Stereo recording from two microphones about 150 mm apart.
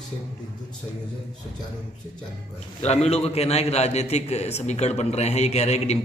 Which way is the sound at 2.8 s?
45° left (ahead or behind).